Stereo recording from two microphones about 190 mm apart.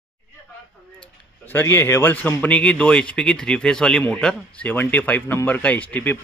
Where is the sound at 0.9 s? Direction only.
25° left (ahead or behind).